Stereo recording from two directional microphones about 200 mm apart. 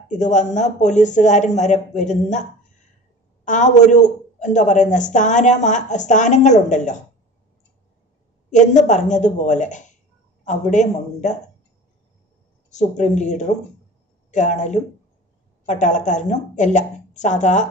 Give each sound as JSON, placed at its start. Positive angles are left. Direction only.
{"t": 0.2, "sound": "a man's voice", "side_deg": 35}
{"t": 3.4, "sound": "a man's voice", "side_deg": 35}
{"t": 8.5, "sound": "a man's voice", "side_deg": 35}
{"t": 12.6, "sound": "a man's voice", "side_deg": 35}